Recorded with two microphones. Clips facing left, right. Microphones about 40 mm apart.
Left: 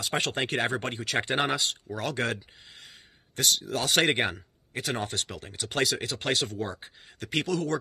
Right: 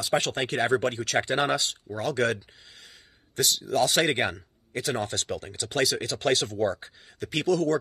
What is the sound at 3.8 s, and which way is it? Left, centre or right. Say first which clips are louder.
Speech: left 2 dB; left.